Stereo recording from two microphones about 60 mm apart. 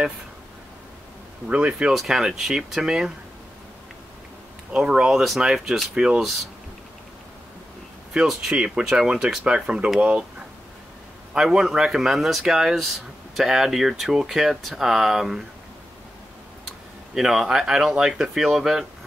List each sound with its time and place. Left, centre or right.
1.5 s speech: centre
2.0 s speech: centre
4.7 s speech: centre
5.1 s speech: centre
8.1 s speech: centre
11.3 s speech: centre
17.1 s speech: centre